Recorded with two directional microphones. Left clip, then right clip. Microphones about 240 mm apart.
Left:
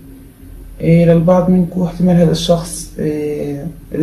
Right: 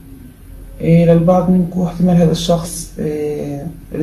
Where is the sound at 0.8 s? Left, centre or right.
Centre.